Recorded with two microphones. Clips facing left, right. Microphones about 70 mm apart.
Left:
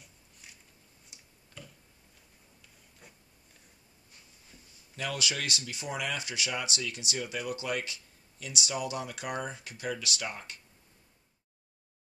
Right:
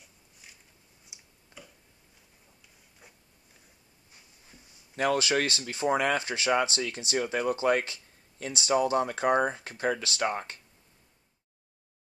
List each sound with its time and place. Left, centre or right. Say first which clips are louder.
1.1 s tick-tock: even; centre
3.0 s a sound: even; centre
4.9 s speech: right 9 dB; right